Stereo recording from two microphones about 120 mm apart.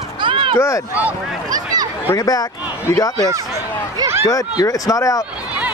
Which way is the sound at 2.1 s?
30° left (ahead or behind).